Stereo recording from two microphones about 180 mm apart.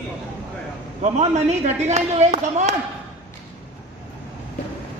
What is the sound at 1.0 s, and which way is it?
Speech, 40° right (ahead or behind).